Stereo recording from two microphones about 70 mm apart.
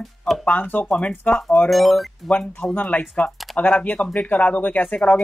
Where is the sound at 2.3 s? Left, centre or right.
Left.